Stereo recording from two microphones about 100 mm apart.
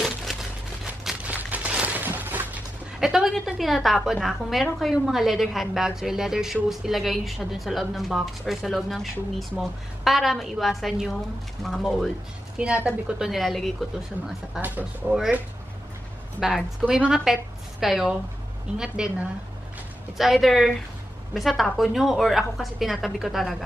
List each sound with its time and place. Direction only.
0.0 s a sound: centre (ahead or behind)
1.2 s a sound: 15° right (ahead or behind)
3.0 s a woman's voice: 5° right (ahead or behind)
13.3 s a woman's voice: centre (ahead or behind)
14.6 s a woman's voice: 15° right (ahead or behind)
16.3 s a woman's voice: 5° right (ahead or behind)